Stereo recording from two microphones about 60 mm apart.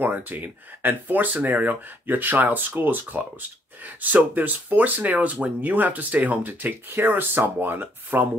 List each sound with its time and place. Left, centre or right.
0.0 s speech: right